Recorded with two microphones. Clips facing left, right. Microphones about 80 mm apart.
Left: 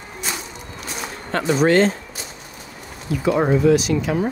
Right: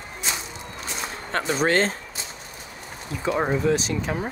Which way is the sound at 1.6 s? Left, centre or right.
Right.